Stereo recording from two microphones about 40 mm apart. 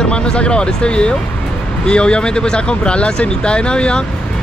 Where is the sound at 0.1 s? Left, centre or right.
Left.